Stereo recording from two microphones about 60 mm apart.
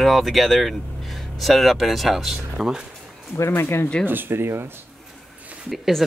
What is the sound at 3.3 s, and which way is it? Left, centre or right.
Speech, left.